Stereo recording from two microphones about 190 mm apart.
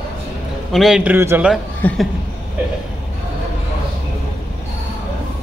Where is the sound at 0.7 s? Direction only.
5° right (ahead or behind).